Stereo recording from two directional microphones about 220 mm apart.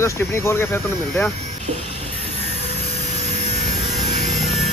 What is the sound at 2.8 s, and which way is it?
Sawing, 30° right (ahead or behind).